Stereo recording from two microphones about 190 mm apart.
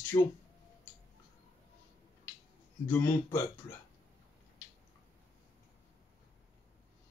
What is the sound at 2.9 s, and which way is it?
Speech, 15° left (ahead or behind).